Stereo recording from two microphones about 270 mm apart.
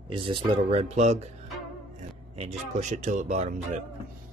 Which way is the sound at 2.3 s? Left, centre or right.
Right.